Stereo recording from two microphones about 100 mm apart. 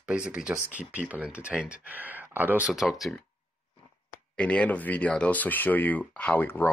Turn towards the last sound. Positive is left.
turn(degrees=20)  # may be behind; listen again after turning